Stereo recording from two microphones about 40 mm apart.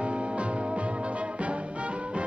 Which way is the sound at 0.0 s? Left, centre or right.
Right.